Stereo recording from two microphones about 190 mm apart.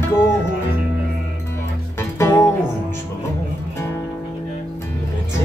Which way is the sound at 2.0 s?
15° left (ahead or behind).